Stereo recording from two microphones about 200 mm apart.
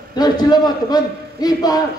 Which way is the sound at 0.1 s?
20° left (ahead or behind).